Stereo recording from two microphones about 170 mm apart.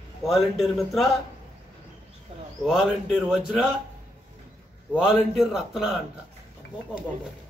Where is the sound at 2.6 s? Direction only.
5° right (ahead or behind).